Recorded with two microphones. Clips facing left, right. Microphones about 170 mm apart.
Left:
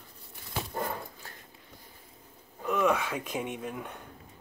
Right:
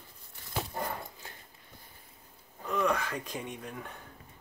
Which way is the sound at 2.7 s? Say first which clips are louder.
Left 3 dB; 5° left (ahead or behind).